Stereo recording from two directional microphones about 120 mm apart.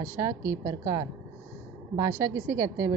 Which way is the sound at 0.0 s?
20° right (ahead or behind).